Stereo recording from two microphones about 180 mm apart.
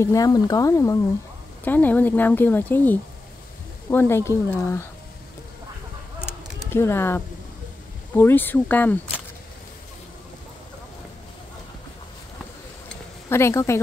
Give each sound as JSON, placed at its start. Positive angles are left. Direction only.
{"t": 0.0, "sound": "speech", "side_deg": 20}
{"t": 6.7, "sound": "speech", "side_deg": 15}
{"t": 12.8, "sound": "a sound", "side_deg": 15}